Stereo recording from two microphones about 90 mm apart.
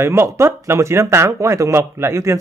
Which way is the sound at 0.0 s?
30° right (ahead or behind).